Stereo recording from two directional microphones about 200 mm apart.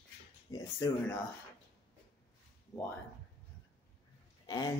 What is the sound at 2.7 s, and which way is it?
Speech, 15° left (ahead or behind).